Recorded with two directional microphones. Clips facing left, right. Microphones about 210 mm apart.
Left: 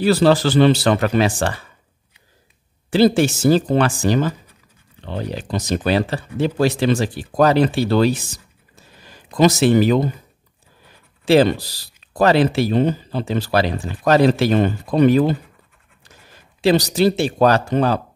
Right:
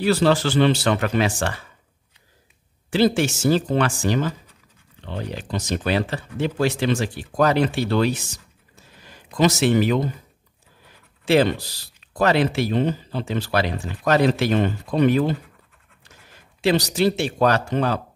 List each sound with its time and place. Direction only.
0.0 s speech: 35° left (ahead or behind)
2.9 s speech: 35° left (ahead or behind)
9.3 s speech: 35° left (ahead or behind)
11.2 s speech: 35° left (ahead or behind)
16.6 s speech: 35° left (ahead or behind)